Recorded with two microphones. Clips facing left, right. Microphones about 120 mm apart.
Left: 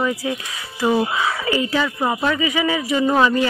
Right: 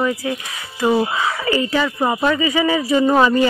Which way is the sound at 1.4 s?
10° left (ahead or behind).